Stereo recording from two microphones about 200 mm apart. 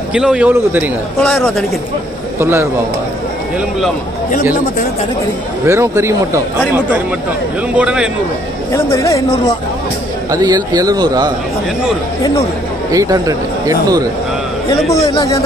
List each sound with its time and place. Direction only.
0.1 s speech: 5° right (ahead or behind)
1.2 s speech: centre (ahead or behind)
2.3 s speech: 10° right (ahead or behind)
5.7 s speech: 15° right (ahead or behind)
7.7 s speech: 5° right (ahead or behind)
8.7 s speech: 15° left (ahead or behind)
10.3 s a man's voice: 20° right (ahead or behind)
12.9 s speech: 15° right (ahead or behind)
14.9 s speech: 15° left (ahead or behind)